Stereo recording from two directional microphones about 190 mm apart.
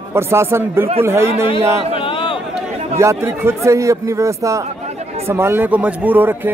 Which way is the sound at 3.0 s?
15° right (ahead or behind).